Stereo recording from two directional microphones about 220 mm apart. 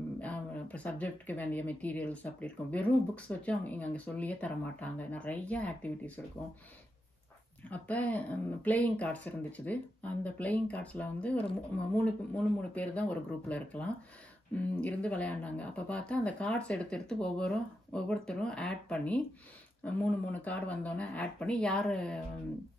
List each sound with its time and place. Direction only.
0.2 s speech: 5° left (ahead or behind)
7.7 s speech: 5° left (ahead or behind)